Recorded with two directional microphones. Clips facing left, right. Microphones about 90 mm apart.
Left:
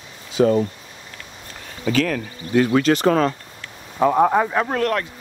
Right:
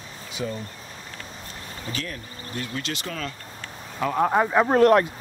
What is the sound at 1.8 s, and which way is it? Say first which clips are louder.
Speech: left 14 dB; 90° left.